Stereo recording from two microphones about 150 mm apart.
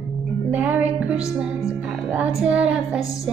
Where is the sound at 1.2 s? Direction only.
20° left (ahead or behind).